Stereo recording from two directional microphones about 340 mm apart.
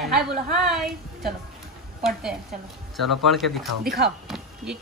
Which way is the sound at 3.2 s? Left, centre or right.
Centre.